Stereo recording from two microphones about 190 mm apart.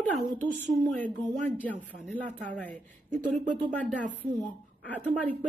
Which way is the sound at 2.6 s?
45° right (ahead or behind).